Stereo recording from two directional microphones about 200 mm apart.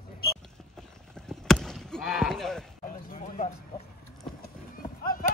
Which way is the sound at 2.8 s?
45° left (ahead or behind).